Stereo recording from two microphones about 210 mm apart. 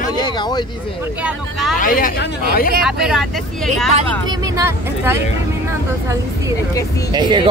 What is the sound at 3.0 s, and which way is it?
Speech, centre (ahead or behind).